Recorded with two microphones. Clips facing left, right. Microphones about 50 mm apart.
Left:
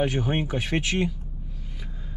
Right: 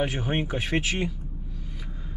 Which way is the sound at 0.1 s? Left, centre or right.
Centre.